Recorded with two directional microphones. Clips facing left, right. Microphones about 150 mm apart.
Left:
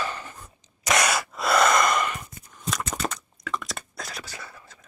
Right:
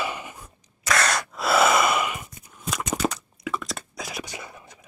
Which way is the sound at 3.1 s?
5° right (ahead or behind).